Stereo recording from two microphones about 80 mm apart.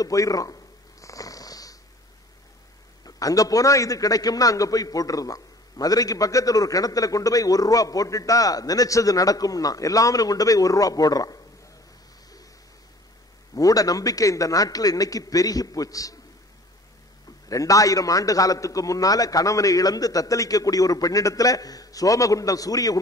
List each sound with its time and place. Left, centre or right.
0.0 s a man's voice: left
1.0 s a sound: left
3.0 s a man's voice: left
13.6 s a man's voice: left
17.5 s a man's voice: left